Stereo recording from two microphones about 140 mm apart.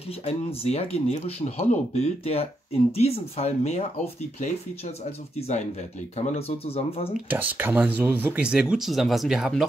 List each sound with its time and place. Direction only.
0.2 s speech: 45° left (ahead or behind)
7.2 s speech: 10° right (ahead or behind)